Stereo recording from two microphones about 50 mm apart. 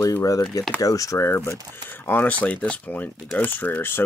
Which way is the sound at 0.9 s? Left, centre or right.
Left.